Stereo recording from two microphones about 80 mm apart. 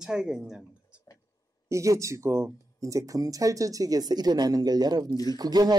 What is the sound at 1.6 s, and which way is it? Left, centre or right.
Speech, right.